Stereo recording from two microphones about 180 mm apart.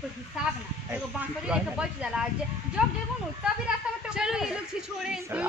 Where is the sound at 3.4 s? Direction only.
5° right (ahead or behind).